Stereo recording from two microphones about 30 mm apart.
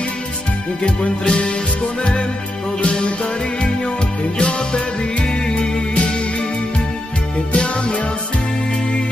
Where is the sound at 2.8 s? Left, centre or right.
Left.